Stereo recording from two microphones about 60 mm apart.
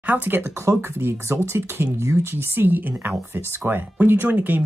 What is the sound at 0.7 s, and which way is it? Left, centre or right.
Speech, right.